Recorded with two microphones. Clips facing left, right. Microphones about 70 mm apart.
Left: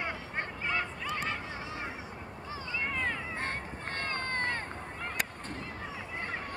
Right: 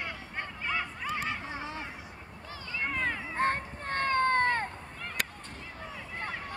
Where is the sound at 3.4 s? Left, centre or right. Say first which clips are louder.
Right 7 dB; right.